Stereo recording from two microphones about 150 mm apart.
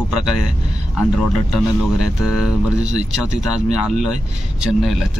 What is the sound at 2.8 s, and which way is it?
Speech, 50° right (ahead or behind).